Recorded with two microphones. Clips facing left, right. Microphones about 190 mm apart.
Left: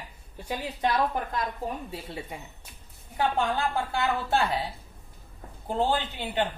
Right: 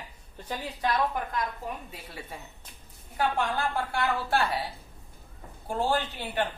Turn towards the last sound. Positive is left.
turn(degrees=20)  # may be behind; listen again after turning